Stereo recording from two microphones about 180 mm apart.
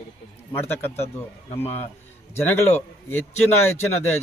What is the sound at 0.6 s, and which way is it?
Speech, 10° left (ahead or behind).